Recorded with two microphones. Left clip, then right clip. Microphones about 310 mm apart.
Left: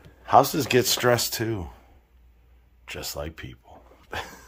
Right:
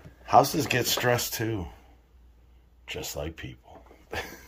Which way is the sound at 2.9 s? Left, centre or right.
Centre.